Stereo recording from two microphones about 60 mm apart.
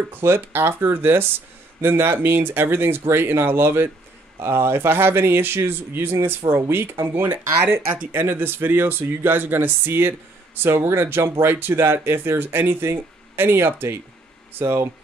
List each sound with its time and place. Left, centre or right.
0.1 s speech: right